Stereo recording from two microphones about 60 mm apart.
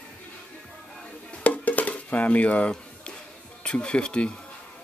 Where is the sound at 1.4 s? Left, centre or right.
Left.